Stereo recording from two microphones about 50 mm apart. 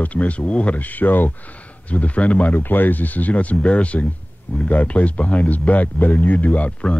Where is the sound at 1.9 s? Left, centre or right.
Left.